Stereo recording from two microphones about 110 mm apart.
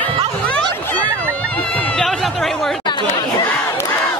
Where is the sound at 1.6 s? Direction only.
15° left (ahead or behind).